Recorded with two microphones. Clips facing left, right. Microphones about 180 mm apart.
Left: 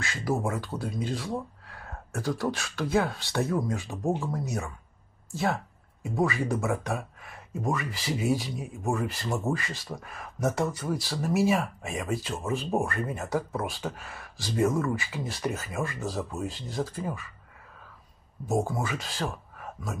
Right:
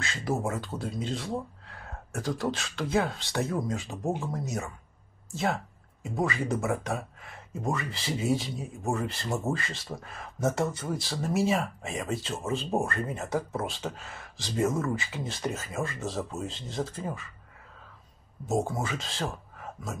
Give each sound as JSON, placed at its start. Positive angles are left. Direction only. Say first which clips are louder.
{"t": 0.0, "sound": "speech", "louder": "left 1 dB", "side_deg": -20}
{"t": 5.3, "sound": "speech", "louder": "left 1 dB", "side_deg": -20}
{"t": 18.4, "sound": "speech", "louder": "left 1 dB", "side_deg": -20}